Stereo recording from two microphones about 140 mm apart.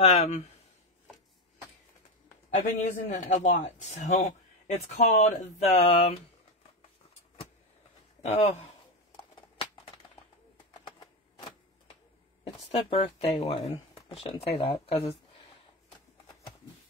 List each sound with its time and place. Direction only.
0.0 s speech: 50° left (ahead or behind)
2.5 s a man's voice: 60° left (ahead or behind)
8.2 s a man's voice: 55° left (ahead or behind)
9.1 s a sound: 35° left (ahead or behind)
10.8 s typewriter: 35° left (ahead or behind)
12.5 s speech: 45° left (ahead or behind)